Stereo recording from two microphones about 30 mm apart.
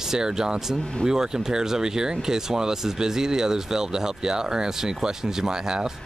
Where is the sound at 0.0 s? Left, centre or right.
Centre.